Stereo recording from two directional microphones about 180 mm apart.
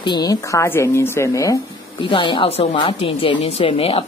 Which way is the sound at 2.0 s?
30° left (ahead or behind).